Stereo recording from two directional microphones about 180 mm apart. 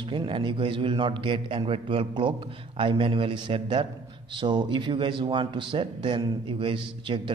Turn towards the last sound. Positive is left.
turn(degrees=-25)  # may be behind; listen again after turning